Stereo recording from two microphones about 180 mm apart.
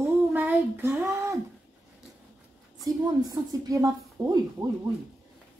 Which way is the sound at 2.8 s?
20° right (ahead or behind).